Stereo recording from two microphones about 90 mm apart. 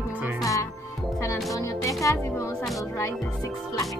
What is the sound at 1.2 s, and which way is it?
Music, 35° left (ahead or behind).